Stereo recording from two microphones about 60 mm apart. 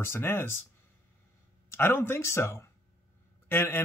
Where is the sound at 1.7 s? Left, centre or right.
Left.